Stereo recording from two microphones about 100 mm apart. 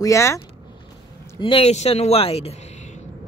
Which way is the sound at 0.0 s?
30° left (ahead or behind).